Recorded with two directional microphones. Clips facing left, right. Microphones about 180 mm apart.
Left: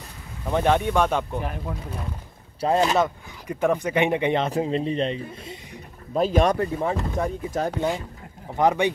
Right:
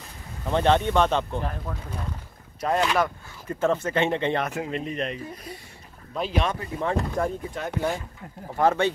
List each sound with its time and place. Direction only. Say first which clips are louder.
0.5 s speech: even; 10° left (ahead or behind)
2.6 s speech: left 3 dB; 35° left (ahead or behind)
3.0 s speech: left 2 dB; 15° left (ahead or behind)
4.5 s speech: left 6 dB; 30° left (ahead or behind)
6.1 s speech: left 7 dB; 45° left (ahead or behind)
6.8 s speech: even; 5° left (ahead or behind)
7.5 s speech: left 7 dB; 40° left (ahead or behind)
8.5 s speech: left 1 dB; 15° left (ahead or behind)